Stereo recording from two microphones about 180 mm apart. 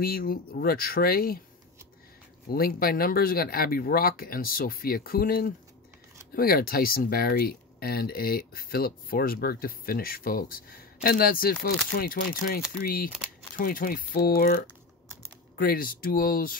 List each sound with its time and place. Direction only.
0.0 s speech: 55° left (ahead or behind)
2.5 s speech: 55° left (ahead or behind)